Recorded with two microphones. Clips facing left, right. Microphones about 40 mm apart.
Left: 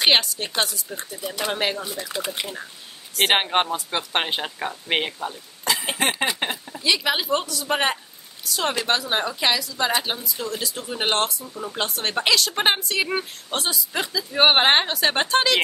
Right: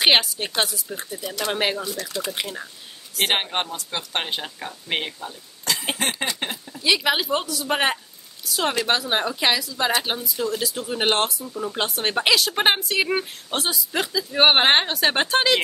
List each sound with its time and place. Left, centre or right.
0.0 s speech: centre
1.2 s speech: centre
1.5 s speech: centre
1.9 s speech: left
3.3 s speech: centre
5.9 s a sound: centre
6.8 s speech: centre